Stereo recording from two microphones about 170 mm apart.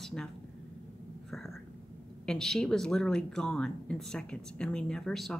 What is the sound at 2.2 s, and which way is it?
Speech, 5° left (ahead or behind).